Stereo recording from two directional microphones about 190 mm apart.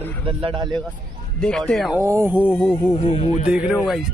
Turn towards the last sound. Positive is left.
turn(degrees=0)  # may be behind; listen again after turning